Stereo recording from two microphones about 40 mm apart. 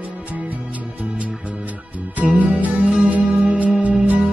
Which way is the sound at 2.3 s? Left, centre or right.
Right.